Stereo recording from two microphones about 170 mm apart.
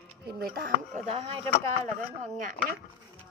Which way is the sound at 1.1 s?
35° right (ahead or behind).